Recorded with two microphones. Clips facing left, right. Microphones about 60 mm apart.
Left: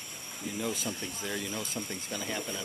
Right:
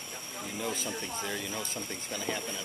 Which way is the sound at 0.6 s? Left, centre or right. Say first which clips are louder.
Even; centre.